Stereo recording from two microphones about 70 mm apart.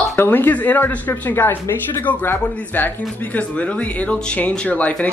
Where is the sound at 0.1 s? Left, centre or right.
Left.